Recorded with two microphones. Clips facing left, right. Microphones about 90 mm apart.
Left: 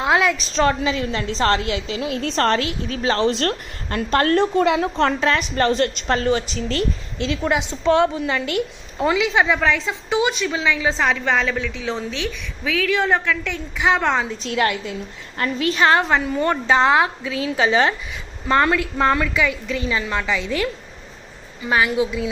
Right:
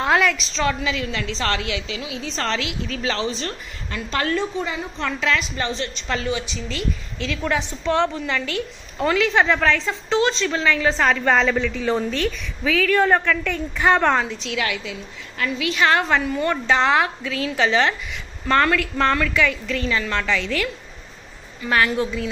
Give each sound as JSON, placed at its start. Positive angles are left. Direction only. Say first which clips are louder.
{"t": 0.0, "sound": "a sound", "louder": "left 1 dB", "side_deg": 20}
{"t": 0.6, "sound": "a woman's voice", "louder": "left 6 dB", "side_deg": 35}
{"t": 2.1, "sound": "a woman's voice", "louder": "left 6 dB", "side_deg": 55}
{"t": 3.3, "sound": "a woman's voice", "louder": "left 7 dB", "side_deg": 65}
{"t": 5.2, "sound": "a woman's voice", "louder": "left 4 dB", "side_deg": 40}
{"t": 7.2, "sound": "a woman's voice", "louder": "left 3 dB", "side_deg": 20}
{"t": 14.4, "sound": "a woman's voice", "louder": "left 4 dB", "side_deg": 40}